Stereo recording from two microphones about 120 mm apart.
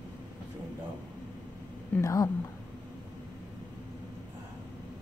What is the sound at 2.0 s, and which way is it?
Speech, 30° left (ahead or behind).